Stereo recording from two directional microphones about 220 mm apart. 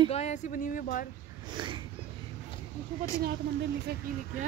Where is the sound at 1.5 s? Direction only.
20° right (ahead or behind).